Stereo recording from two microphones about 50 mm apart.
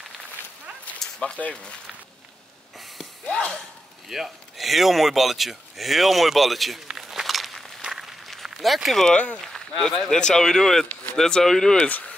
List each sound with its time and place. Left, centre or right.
1.2 s speech: left
3.3 s a sound: left
4.1 s speech: centre
7.0 s a sound: centre
9.1 s speech: left
9.4 s speech: centre